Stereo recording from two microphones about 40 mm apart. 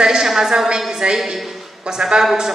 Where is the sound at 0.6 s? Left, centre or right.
Right.